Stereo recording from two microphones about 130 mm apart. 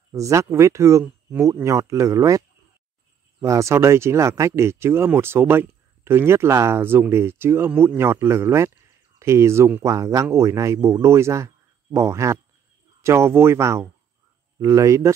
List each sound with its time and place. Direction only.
0.1 s speech: 25° right (ahead or behind)